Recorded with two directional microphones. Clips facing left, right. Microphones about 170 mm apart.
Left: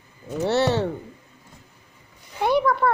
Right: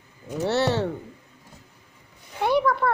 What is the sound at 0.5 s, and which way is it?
Speech, 20° left (ahead or behind).